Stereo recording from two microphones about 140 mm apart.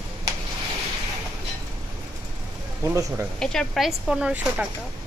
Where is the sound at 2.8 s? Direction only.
15° right (ahead or behind).